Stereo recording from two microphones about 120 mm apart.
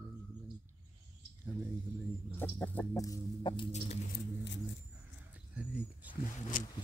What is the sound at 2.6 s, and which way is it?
Rodents, 15° left (ahead or behind).